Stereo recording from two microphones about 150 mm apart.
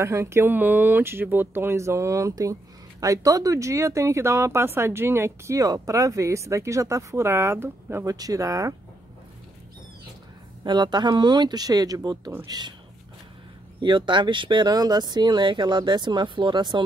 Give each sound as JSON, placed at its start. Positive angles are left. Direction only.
{"t": 0.0, "sound": "speech", "side_deg": -20}
{"t": 10.6, "sound": "speech", "side_deg": -30}
{"t": 13.7, "sound": "speech", "side_deg": -30}